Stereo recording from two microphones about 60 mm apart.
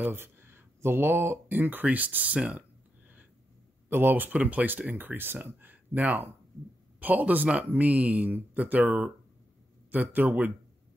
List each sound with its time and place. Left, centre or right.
0.0 s speech: right
3.9 s speech: right
4.9 s speech: right